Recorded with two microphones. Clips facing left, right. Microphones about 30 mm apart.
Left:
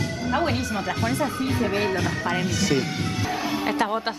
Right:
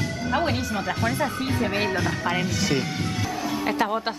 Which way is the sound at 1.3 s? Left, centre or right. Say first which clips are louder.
Left 1 dB; centre.